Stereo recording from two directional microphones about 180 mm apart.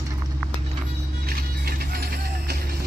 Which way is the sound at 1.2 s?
55° right (ahead or behind).